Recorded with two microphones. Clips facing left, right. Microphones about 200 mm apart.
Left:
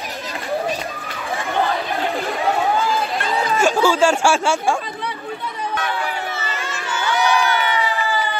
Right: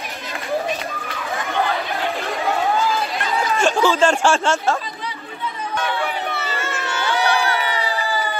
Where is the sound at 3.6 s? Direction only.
10° left (ahead or behind).